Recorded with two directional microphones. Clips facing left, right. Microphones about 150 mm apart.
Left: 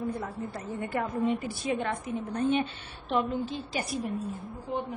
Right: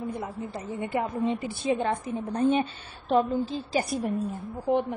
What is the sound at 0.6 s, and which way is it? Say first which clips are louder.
A woman's voice: right 3 dB; 20° right (ahead or behind).